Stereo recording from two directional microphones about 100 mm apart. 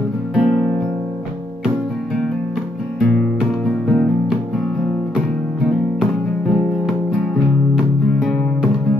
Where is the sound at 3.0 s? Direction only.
Centre (ahead or behind).